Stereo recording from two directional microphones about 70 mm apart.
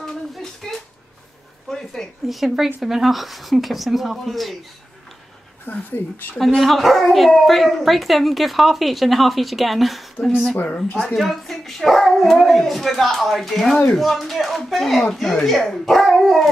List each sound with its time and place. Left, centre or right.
0.0 s a sound: centre
1.7 s speech: centre
5.7 s speech: left
6.4 s speech: centre
11.1 s speech: centre